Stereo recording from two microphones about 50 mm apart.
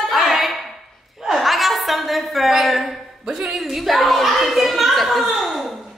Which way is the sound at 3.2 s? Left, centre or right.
Centre.